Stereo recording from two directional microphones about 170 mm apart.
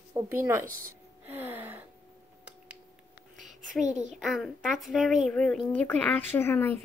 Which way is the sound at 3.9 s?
45° right (ahead or behind).